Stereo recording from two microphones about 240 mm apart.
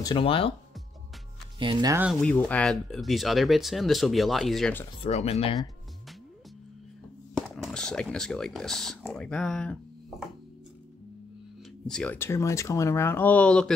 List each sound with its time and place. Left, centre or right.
0.0 s speech: left
1.6 s speech: centre
2.0 s speech: centre
4.9 s speech: left
7.5 s speech: centre
11.9 s speech: centre